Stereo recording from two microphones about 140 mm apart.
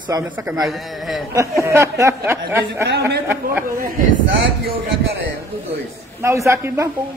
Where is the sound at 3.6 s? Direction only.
90° right.